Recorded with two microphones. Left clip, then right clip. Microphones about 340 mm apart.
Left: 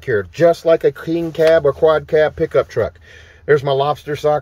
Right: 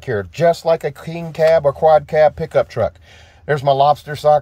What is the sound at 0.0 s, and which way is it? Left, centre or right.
Speech, centre.